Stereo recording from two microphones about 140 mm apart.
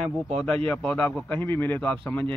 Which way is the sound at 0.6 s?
10° left (ahead or behind).